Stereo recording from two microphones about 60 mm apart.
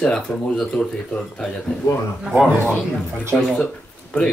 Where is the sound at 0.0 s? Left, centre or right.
Centre.